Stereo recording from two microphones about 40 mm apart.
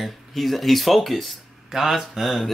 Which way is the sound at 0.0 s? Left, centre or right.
Centre.